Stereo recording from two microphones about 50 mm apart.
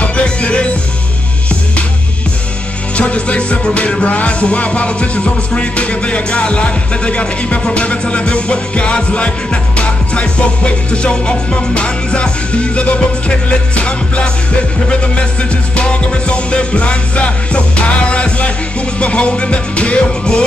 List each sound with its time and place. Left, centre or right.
0.0 s music: left
3.0 s music: left
15.7 s music: left